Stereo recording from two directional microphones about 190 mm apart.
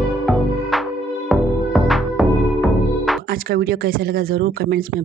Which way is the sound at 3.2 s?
55° right (ahead or behind).